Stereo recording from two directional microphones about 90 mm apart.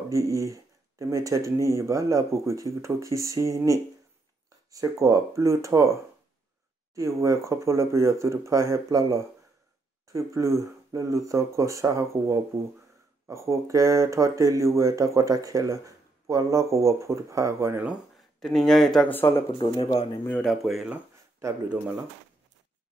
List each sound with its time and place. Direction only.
0.1 s speech: 35° right (ahead or behind)
7.0 s speech: 35° right (ahead or behind)
18.4 s speech: 5° left (ahead or behind)
19.0 s speech: 25° left (ahead or behind)
19.6 s speech: 65° left (ahead or behind)
20.4 s speech: centre (ahead or behind)